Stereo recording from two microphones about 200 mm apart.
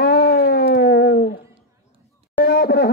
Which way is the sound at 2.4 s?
50° left (ahead or behind).